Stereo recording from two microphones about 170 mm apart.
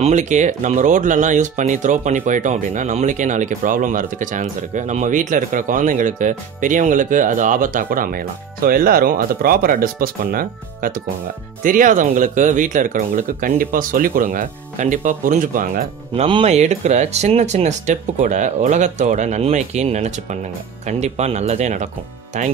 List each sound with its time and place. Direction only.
0.0 s speech: 45° right (ahead or behind)
16.3 s speech: 35° right (ahead or behind)